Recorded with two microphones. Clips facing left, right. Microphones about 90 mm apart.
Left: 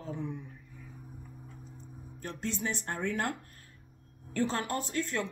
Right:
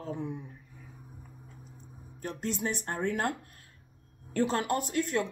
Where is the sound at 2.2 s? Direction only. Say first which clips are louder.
Right 2 dB; 50° right (ahead or behind).